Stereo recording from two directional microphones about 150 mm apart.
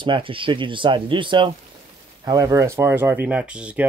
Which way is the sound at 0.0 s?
35° right (ahead or behind).